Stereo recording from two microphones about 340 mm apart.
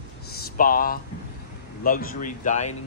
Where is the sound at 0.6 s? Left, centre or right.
Left.